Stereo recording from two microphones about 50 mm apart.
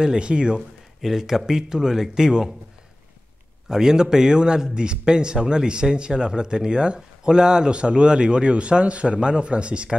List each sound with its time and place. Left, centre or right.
0.0 s a man's voice: centre
0.6 s a man's voice: centre
3.6 s a man's voice: centre